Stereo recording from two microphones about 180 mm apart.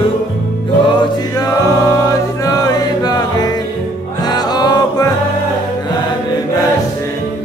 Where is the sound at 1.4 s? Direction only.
20° left (ahead or behind).